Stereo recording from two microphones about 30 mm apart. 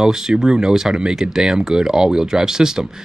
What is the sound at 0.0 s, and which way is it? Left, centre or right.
Speech, centre.